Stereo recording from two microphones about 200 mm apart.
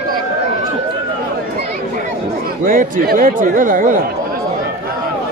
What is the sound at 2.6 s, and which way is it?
A man's voice, 45° right (ahead or behind).